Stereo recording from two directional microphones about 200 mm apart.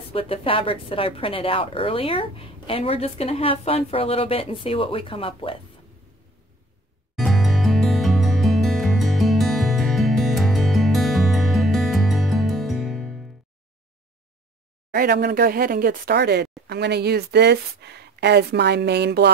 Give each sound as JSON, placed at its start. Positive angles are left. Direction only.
{"t": 0.1, "sound": "a woman's voice", "side_deg": 30}
{"t": 7.2, "sound": "music", "side_deg": 0}
{"t": 15.0, "sound": "speech", "side_deg": -50}